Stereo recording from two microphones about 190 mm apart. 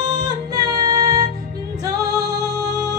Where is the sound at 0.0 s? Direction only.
20° right (ahead or behind).